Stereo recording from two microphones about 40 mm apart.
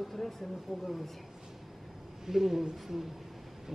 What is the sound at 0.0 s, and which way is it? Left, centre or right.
Speech, centre.